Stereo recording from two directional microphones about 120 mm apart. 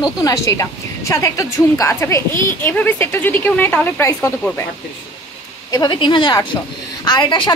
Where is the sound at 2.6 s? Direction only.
15° left (ahead or behind).